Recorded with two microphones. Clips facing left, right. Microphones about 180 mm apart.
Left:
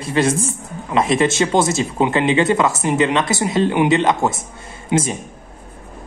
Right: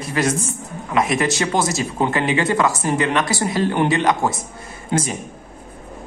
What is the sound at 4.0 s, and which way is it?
Speech, 25° left (ahead or behind).